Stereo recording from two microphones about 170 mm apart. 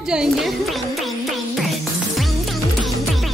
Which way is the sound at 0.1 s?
5° right (ahead or behind).